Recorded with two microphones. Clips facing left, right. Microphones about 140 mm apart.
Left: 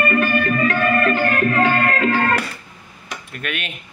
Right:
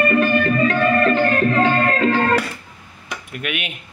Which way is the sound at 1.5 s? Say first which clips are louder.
Right 1 dB; 5° left (ahead or behind).